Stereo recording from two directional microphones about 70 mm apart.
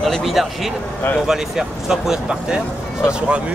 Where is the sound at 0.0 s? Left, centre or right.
Centre.